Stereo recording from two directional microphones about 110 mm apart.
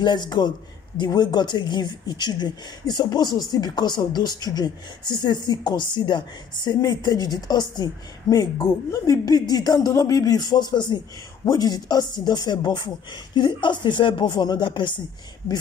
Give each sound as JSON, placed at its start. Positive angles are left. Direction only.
{"t": 0.0, "sound": "speech", "side_deg": 40}